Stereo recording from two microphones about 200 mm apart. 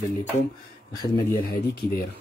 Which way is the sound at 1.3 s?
50° left (ahead or behind).